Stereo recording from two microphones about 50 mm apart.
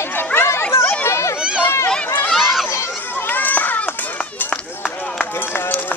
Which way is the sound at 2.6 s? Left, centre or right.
Left.